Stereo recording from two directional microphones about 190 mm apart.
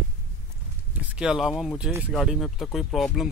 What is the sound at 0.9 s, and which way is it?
Speech, 5° right (ahead or behind).